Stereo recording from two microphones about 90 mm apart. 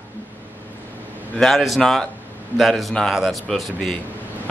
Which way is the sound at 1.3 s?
Centre (ahead or behind).